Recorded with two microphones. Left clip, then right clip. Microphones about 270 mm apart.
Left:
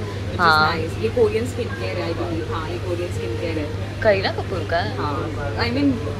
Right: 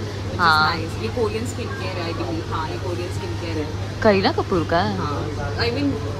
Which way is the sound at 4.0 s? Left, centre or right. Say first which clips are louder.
Right 1 dB; right.